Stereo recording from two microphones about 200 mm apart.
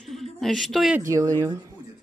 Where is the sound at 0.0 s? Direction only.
Centre (ahead or behind).